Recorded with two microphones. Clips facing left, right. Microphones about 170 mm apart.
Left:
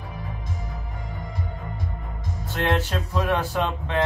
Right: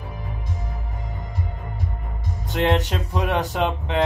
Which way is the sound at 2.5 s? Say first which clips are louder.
Right 3 dB; 20° right (ahead or behind).